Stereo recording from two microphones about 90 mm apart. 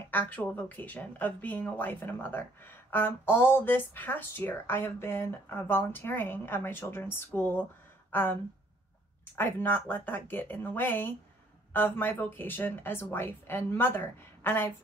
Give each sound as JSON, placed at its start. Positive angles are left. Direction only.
{"t": 0.1, "sound": "speech", "side_deg": 20}